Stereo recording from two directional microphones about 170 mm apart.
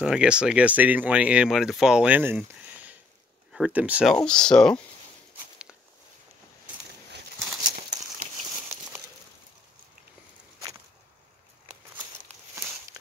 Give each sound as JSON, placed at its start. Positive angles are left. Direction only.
{"t": 0.0, "sound": "speech", "side_deg": -5}
{"t": 4.1, "sound": "speech", "side_deg": 5}
{"t": 7.7, "sound": "crumpling", "side_deg": -45}
{"t": 8.5, "sound": "crumpling", "side_deg": -10}